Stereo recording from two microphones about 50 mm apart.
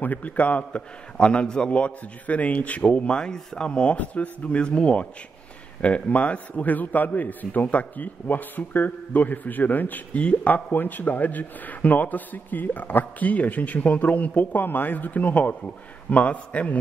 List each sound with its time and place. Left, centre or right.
0.0 s a man's voice: left
1.1 s a man's voice: left